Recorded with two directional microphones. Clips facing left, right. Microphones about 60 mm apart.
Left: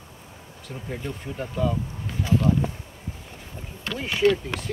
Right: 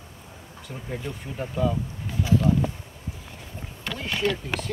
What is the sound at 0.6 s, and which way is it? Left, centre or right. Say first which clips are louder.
Speech: left 1 dB; centre.